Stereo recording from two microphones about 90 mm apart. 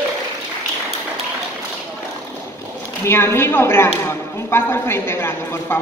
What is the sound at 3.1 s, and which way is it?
A woman's voice, 30° left (ahead or behind).